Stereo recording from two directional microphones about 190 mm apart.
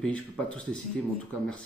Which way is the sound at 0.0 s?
5° left (ahead or behind).